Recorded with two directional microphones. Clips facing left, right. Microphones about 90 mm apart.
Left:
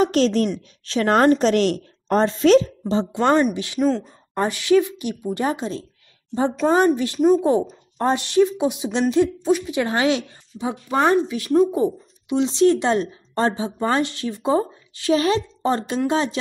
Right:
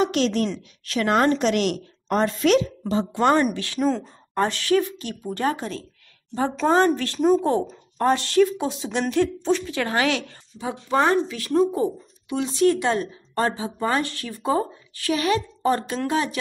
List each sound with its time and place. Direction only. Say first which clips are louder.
0.0 s a woman's voice: left 3 dB; 40° left (ahead or behind); by 6.8 s 15° left (ahead or behind)
7.2 s speech: left 2 dB; centre (ahead or behind)
8.0 s a woman's voice: left 1 dB; 20° left (ahead or behind)